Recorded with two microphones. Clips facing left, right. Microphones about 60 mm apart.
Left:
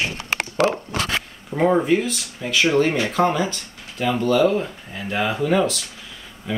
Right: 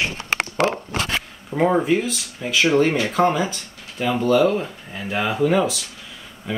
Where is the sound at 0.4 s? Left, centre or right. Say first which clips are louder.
Left 2 dB; right.